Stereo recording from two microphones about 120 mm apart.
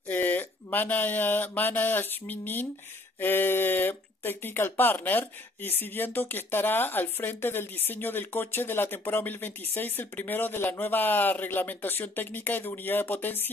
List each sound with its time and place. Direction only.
0.1 s speech: 15° left (ahead or behind)